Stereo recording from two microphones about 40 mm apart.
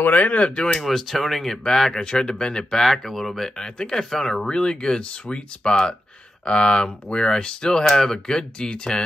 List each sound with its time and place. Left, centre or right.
0.0 s speech: left
0.4 s speech: left
0.7 s speech: centre
2.0 s speech: centre
2.8 s speech: centre; by 9.0 s left